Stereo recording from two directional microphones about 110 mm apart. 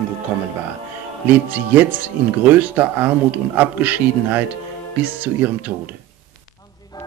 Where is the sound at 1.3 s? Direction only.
15° right (ahead or behind).